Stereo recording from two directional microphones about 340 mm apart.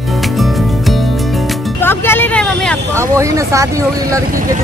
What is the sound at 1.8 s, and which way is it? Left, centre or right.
Vehicle, centre.